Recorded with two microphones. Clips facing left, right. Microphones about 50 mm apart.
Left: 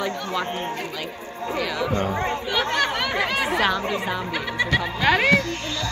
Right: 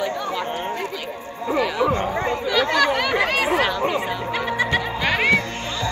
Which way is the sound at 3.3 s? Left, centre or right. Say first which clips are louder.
Right 3 dB; right.